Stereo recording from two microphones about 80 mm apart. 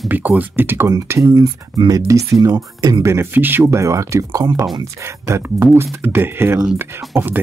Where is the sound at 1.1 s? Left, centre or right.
Right.